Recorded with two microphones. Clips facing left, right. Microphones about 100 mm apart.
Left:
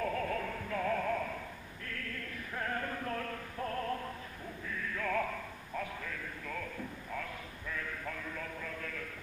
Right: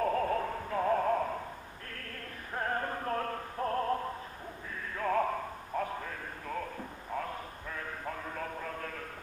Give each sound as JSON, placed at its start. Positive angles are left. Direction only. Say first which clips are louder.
{"t": 0.0, "sound": "synthetic singing", "louder": "right 5 dB", "side_deg": -40}
{"t": 1.9, "sound": "music", "louder": "left 4 dB", "side_deg": -40}
{"t": 4.9, "sound": "a sound", "louder": "right 6 dB", "side_deg": -35}